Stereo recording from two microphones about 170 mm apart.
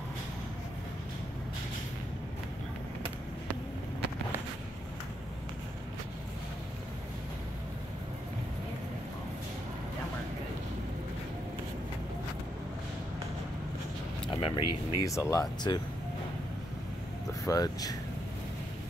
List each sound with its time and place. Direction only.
14.3 s speech: 25° left (ahead or behind)
17.5 s speech: 20° left (ahead or behind)